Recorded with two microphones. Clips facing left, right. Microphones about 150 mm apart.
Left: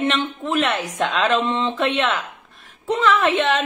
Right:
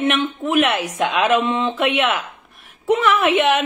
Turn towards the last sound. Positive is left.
turn(degrees=-10)  # may be behind; listen again after turning